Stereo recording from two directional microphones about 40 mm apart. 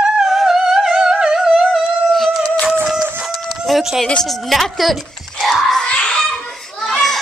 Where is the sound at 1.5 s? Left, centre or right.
Centre.